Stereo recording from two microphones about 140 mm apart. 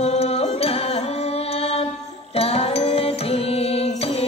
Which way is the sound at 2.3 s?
45° left (ahead or behind).